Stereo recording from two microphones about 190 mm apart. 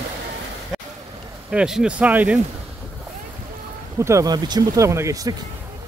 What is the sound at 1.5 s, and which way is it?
Speech, 5° right (ahead or behind).